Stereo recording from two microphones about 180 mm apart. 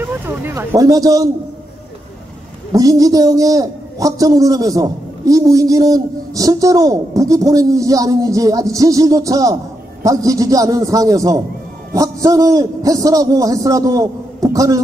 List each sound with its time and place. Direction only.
0.0 s a man's voice: 15° right (ahead or behind)
2.7 s a man's voice: 20° right (ahead or behind)